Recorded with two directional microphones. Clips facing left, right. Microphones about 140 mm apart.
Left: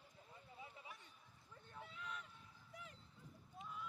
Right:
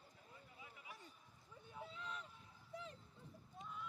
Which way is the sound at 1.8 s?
30° right (ahead or behind).